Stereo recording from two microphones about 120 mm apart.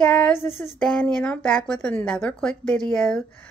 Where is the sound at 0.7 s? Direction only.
10° left (ahead or behind).